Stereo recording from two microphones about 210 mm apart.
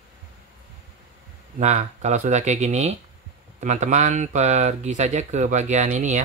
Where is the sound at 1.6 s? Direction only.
30° right (ahead or behind).